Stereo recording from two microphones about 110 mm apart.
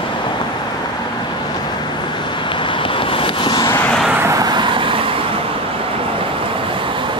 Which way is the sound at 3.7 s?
20° left (ahead or behind).